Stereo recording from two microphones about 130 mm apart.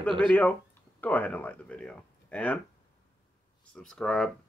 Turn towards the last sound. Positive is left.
turn(degrees=5)  # may be behind; listen again after turning